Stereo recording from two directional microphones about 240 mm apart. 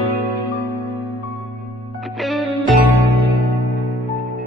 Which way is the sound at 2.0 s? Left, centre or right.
Centre.